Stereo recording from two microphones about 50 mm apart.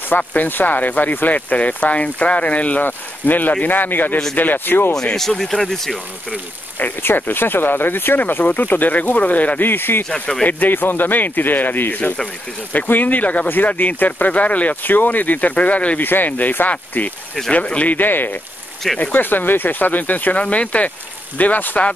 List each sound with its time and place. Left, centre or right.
0.2 s speech: left
0.5 s speech: left
5.1 s speech: centre
7.0 s speech: left
9.7 s speech: left
10.0 s speech: left
10.4 s speech: left
16.0 s speech: left